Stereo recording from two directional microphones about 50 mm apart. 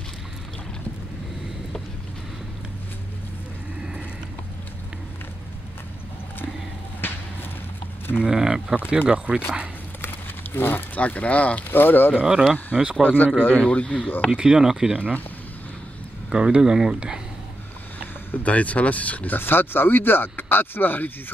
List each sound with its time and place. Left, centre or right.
7.0 s a sound: left
8.2 s speech: centre
8.7 s speech: right
10.0 s a sound: left
11.0 s speech: left
11.7 s speech: left
12.1 s speech: centre
13.0 s a man's voice: left
13.6 s speech: left
14.3 s speech: centre
16.3 s speech: centre
18.3 s speech: left
19.3 s speech: left